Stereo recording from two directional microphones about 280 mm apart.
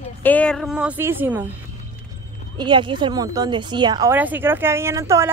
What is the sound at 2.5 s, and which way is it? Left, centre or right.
Speech, centre.